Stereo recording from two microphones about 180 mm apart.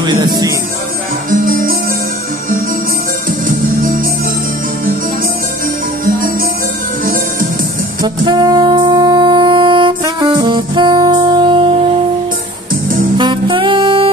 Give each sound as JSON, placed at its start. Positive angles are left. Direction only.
{"t": 0.0, "sound": "speech", "side_deg": -20}
{"t": 1.3, "sound": "music", "side_deg": -50}
{"t": 3.3, "sound": "music", "side_deg": -50}
{"t": 8.0, "sound": "music", "side_deg": -20}
{"t": 13.2, "sound": "music", "side_deg": -25}